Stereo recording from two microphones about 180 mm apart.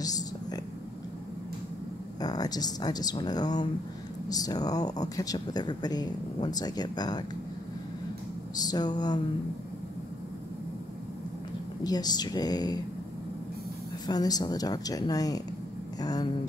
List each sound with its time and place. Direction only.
0.0 s whispering: 20° left (ahead or behind)
2.1 s speech: 20° left (ahead or behind)
8.5 s speech: 20° left (ahead or behind)
11.8 s speech: 20° left (ahead or behind)
14.0 s speech: 20° left (ahead or behind)